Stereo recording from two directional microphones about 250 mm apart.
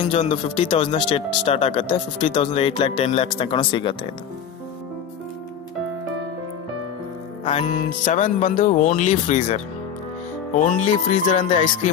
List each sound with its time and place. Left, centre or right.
0.1 s speech: left
7.4 s speech: left